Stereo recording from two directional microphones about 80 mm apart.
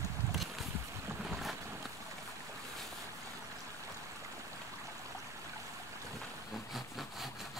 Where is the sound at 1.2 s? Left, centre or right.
Centre.